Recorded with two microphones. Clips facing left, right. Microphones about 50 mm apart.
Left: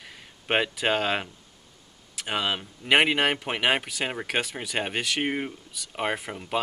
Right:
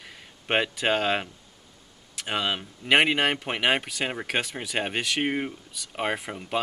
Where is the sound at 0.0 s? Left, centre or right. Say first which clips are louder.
Even; centre.